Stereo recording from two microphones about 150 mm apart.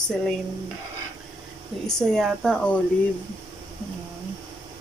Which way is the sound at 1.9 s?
5° left (ahead or behind).